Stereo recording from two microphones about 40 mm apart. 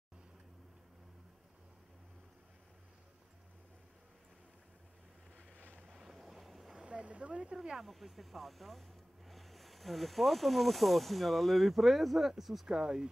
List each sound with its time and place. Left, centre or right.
5.9 s boat: centre
6.8 s boat: right
7.5 s speech: centre
7.8 s speech: centre